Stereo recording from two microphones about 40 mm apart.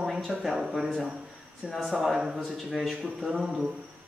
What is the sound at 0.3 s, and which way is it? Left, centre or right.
A man's voice, centre.